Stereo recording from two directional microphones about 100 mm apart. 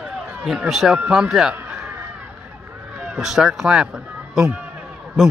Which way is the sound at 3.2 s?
5° right (ahead or behind).